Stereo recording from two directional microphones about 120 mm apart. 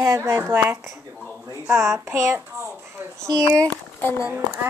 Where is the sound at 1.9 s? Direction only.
25° right (ahead or behind).